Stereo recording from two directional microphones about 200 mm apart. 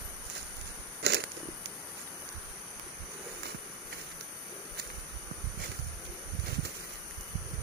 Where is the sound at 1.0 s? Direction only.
60° right (ahead or behind).